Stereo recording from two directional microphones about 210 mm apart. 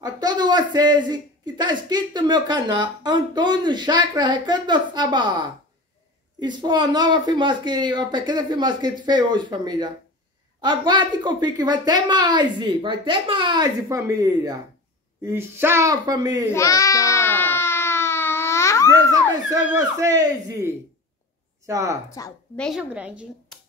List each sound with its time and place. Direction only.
0.0 s speech: 20° right (ahead or behind)
6.4 s speech: 20° right (ahead or behind)
16.4 s baby cry: 15° left (ahead or behind)
19.5 s speech: 15° right (ahead or behind)
22.2 s a woman's voice: 15° left (ahead or behind)
22.6 s speech: 5° right (ahead or behind)